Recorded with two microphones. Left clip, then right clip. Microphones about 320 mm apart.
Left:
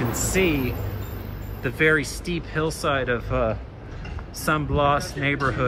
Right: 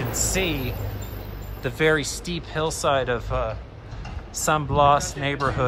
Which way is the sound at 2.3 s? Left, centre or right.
Right.